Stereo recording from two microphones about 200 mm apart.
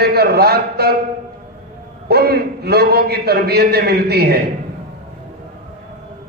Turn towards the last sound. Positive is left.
turn(degrees=-50)  # may be behind; listen again after turning